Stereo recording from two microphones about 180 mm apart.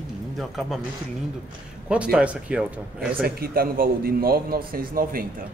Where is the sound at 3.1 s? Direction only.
60° right (ahead or behind).